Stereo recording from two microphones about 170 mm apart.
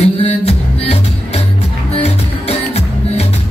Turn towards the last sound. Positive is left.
turn(degrees=35)  # may be behind; listen again after turning